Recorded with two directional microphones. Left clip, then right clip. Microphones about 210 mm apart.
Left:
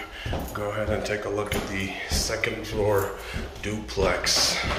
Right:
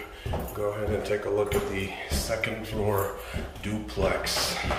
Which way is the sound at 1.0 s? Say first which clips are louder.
Right 1 dB; 5° right (ahead or behind).